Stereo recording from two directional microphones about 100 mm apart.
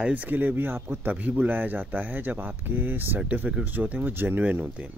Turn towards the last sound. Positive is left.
turn(degrees=-20)  # may be behind; listen again after turning